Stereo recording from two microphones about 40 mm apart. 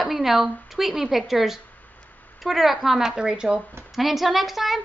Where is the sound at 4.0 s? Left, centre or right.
Centre.